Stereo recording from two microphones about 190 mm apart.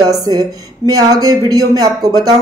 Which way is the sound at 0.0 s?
20° right (ahead or behind).